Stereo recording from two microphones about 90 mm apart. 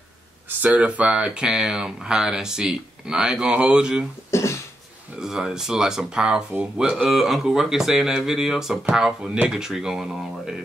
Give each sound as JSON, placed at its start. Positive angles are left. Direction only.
{"t": 0.5, "sound": "speech", "side_deg": -15}
{"t": 4.3, "sound": "cough", "side_deg": 30}
{"t": 5.2, "sound": "speech", "side_deg": -5}